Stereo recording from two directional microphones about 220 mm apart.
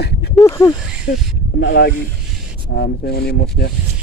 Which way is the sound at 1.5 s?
50° left (ahead or behind).